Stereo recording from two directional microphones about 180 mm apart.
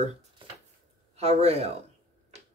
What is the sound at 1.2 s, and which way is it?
Speech, 35° right (ahead or behind).